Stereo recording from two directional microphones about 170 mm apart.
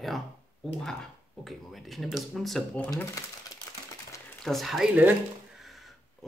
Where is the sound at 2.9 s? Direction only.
20° left (ahead or behind).